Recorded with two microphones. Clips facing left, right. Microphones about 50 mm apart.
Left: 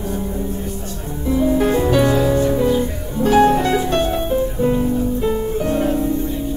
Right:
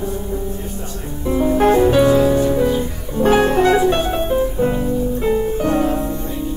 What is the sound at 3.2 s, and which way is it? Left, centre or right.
Music, right.